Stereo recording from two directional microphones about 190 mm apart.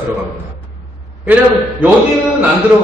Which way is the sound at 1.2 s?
10° right (ahead or behind).